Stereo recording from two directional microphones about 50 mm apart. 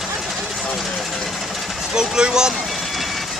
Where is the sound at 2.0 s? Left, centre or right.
Centre.